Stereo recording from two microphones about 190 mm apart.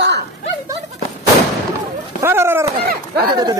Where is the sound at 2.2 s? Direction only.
10° right (ahead or behind).